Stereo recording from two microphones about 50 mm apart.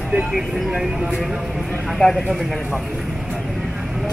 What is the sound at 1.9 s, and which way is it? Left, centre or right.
Speech, centre.